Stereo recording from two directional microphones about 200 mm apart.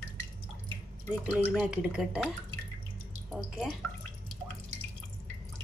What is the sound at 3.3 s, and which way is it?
Speech, centre (ahead or behind).